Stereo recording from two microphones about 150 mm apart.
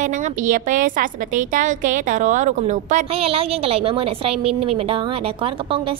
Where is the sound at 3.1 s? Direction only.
40° right (ahead or behind).